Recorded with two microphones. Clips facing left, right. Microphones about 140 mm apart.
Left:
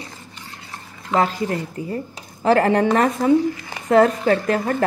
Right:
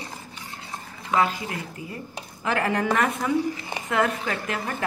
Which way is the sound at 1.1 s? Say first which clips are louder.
Left 4 dB; 40° left (ahead or behind).